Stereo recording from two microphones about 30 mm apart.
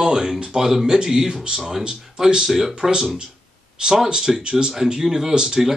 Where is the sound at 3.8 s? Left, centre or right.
Right.